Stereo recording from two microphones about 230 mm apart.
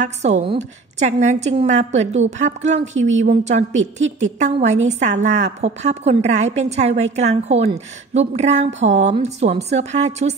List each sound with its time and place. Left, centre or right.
0.0 s a woman's voice: right